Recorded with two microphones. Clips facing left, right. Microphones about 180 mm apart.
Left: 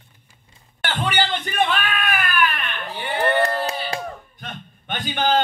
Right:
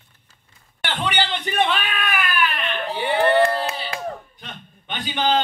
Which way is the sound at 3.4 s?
35° left (ahead or behind).